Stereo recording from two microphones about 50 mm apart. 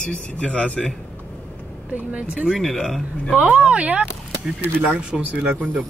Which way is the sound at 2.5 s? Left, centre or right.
Centre.